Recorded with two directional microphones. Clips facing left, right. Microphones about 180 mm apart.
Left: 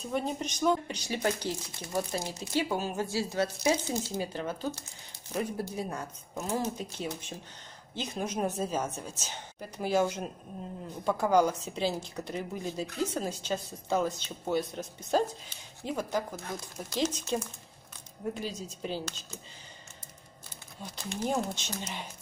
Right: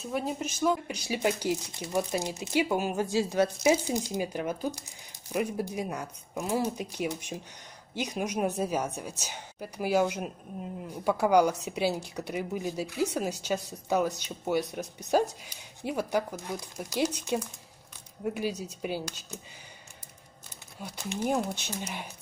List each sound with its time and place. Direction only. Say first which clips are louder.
0.0 s speech: even; 5° right (ahead or behind)
18.8 s speech: right 2 dB; 10° right (ahead or behind)
20.8 s speech: right 2 dB; 15° right (ahead or behind)